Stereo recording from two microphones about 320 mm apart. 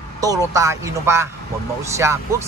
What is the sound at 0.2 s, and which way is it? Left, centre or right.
Speech, centre.